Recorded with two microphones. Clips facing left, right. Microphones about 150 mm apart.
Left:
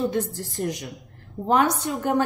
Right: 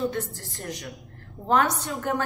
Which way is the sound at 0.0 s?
20° left (ahead or behind).